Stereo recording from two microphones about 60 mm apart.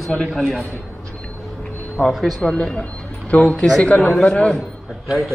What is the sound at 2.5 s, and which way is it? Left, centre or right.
Speech, centre.